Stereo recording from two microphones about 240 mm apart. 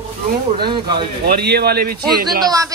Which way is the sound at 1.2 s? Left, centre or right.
Right.